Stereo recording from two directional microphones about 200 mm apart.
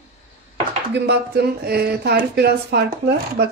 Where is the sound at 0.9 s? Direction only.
55° right (ahead or behind).